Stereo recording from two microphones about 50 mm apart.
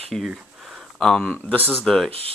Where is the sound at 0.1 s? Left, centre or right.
Centre.